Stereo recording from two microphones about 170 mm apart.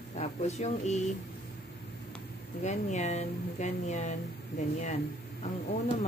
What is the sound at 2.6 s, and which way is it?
Speech, 40° left (ahead or behind).